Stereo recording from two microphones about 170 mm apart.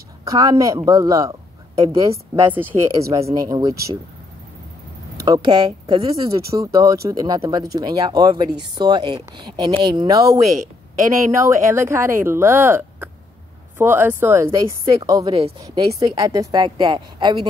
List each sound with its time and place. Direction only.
0.3 s speech: 20° right (ahead or behind)
5.2 s speech: 20° right (ahead or behind)
11.4 s speech: 15° right (ahead or behind)